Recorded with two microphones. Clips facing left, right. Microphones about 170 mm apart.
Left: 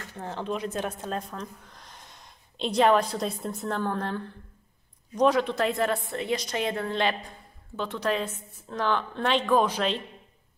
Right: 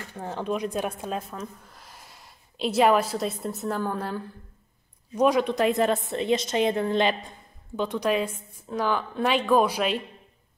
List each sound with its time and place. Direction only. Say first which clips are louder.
0.0 s a woman's voice: right 2 dB; 10° right (ahead or behind)